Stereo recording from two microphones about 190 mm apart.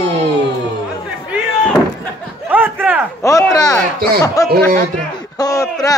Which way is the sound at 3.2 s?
15° left (ahead or behind).